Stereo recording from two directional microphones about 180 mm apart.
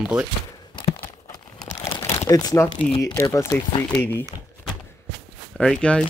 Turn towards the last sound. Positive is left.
turn(degrees=5)  # may be behind; listen again after turning